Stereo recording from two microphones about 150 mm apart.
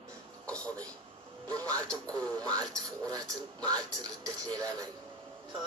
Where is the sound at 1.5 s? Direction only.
25° right (ahead or behind).